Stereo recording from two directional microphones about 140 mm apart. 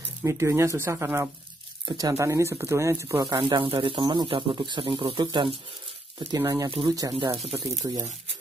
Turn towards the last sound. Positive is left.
turn(degrees=-25)  # may be behind; listen again after turning